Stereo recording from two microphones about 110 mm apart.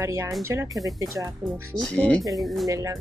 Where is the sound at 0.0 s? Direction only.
25° right (ahead or behind).